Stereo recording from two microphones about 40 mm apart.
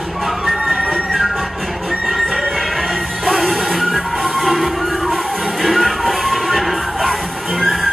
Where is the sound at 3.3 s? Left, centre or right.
Centre.